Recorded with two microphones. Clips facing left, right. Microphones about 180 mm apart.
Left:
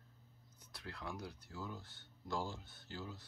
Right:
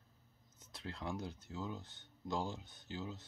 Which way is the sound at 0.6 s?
25° right (ahead or behind).